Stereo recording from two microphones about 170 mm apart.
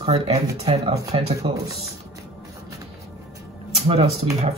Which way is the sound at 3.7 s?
35° right (ahead or behind).